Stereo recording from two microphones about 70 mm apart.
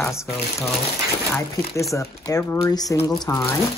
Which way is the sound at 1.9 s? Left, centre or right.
Left.